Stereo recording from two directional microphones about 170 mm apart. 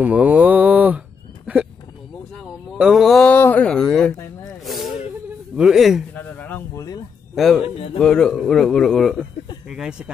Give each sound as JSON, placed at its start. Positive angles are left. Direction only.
{"t": 0.0, "sound": "a sound", "side_deg": -10}
{"t": 2.3, "sound": "speech", "side_deg": 0}
{"t": 6.1, "sound": "a sound", "side_deg": 10}
{"t": 7.3, "sound": "speech", "side_deg": 0}
{"t": 7.6, "sound": "speech", "side_deg": 35}
{"t": 8.0, "sound": "speech", "side_deg": 5}